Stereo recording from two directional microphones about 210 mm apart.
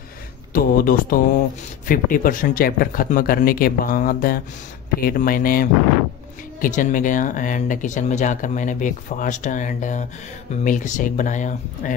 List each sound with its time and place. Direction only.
0.5 s speech: 45° left (ahead or behind)